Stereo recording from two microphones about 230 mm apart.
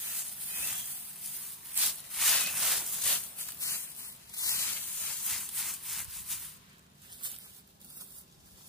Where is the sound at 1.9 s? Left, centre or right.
Centre.